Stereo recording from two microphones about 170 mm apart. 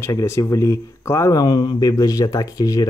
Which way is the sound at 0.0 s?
15° left (ahead or behind).